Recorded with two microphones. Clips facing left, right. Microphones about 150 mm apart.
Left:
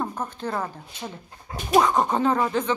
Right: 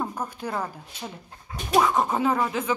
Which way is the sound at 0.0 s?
10° right (ahead or behind).